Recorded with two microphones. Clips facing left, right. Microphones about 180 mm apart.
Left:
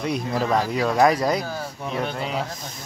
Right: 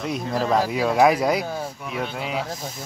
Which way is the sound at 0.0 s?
Centre (ahead or behind).